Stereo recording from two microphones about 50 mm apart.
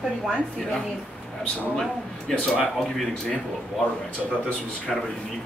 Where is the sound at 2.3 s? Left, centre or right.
Centre.